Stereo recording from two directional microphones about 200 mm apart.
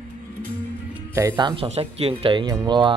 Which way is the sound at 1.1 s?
10° right (ahead or behind).